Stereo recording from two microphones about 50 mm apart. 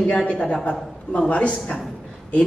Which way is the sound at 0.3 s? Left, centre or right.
Left.